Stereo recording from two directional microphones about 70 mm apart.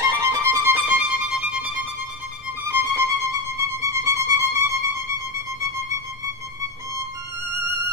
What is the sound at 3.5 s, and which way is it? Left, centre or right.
Music, right.